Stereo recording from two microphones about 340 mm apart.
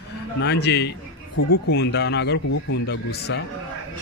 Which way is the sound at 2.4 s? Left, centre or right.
Left.